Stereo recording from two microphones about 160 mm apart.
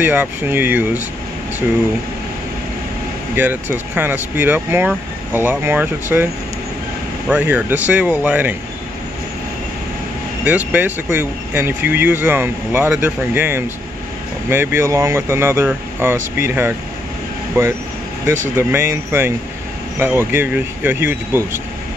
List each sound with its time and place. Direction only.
0.0 s speech: 10° right (ahead or behind)
3.3 s speech: 10° right (ahead or behind)
7.2 s speech: 10° right (ahead or behind)
10.4 s speech: 10° right (ahead or behind)